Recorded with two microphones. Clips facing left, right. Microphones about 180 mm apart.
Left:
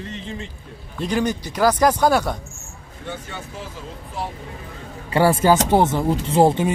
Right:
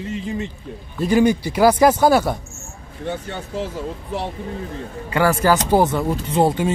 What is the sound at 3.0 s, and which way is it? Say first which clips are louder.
Speech: right 5 dB; 50° right (ahead or behind).